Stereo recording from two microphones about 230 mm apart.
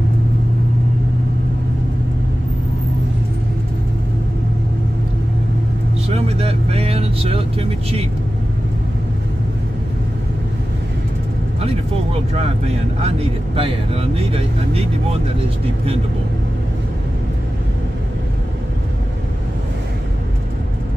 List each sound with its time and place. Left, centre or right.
6.0 s vehicle: right
13.6 s speech: right